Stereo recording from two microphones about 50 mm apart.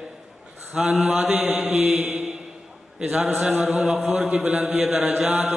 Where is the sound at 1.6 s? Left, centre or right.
Centre.